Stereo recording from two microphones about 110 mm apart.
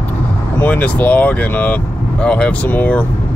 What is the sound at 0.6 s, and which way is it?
Speech, 15° left (ahead or behind).